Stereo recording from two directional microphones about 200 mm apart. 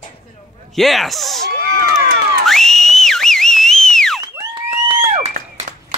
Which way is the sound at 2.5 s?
Centre (ahead or behind).